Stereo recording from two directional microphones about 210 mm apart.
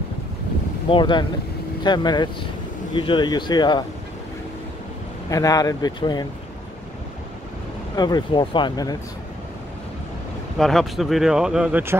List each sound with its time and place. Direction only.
0.8 s speech: 25° left (ahead or behind)
5.3 s speech: 15° left (ahead or behind)
7.9 s speech: 20° left (ahead or behind)
10.6 s speech: centre (ahead or behind)